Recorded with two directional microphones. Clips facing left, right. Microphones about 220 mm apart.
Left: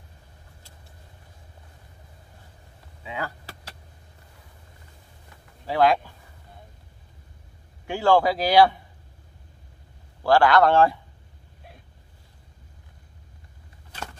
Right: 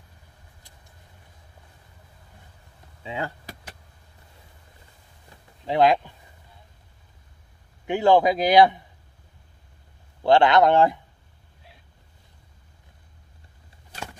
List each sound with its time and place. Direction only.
3.0 s speech: 25° right (ahead or behind)
5.7 s a man's voice: 20° right (ahead or behind)
7.8 s a man's voice: 20° right (ahead or behind)
10.2 s a man's voice: 20° right (ahead or behind)